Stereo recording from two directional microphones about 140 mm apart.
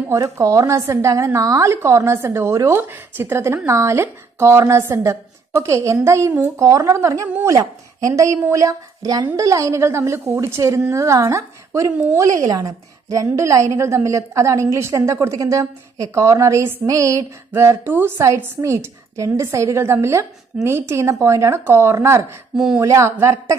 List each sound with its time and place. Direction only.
0.1 s speech: 20° right (ahead or behind)